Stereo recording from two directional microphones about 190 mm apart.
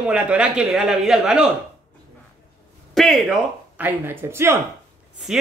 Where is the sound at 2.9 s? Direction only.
Centre (ahead or behind).